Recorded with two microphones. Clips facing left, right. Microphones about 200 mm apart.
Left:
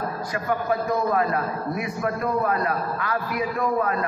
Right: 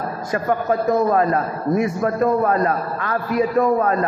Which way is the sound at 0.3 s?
45° right (ahead or behind).